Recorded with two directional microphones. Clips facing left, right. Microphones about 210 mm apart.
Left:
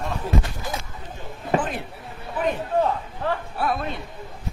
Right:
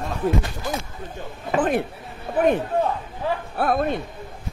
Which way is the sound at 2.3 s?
55° right (ahead or behind).